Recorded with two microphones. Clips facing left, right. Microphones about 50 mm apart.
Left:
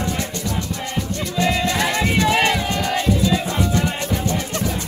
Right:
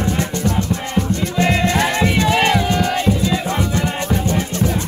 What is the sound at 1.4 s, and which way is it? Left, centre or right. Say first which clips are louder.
Music: right 3 dB; right.